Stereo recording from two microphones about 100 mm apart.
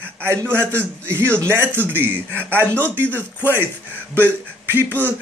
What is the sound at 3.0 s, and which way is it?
Speech, 15° left (ahead or behind).